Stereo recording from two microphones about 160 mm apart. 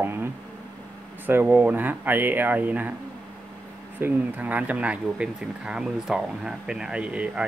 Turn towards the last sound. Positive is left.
turn(degrees=-5)  # may be behind; listen again after turning